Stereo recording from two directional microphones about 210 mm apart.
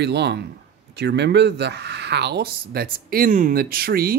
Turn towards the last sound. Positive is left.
turn(degrees=-45)  # may be behind; listen again after turning